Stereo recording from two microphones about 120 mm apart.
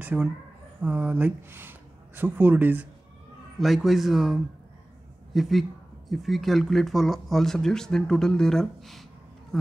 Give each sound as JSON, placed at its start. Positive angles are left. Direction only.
{"t": 0.0, "sound": "speech", "side_deg": -15}
{"t": 3.5, "sound": "speech", "side_deg": 0}